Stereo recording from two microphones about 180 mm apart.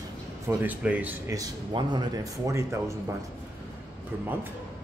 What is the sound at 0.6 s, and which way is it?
Speech, 10° right (ahead or behind).